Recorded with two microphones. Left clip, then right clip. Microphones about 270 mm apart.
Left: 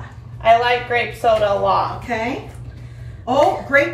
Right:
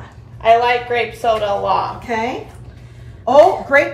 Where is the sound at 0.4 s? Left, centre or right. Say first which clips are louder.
Right 1 dB; centre.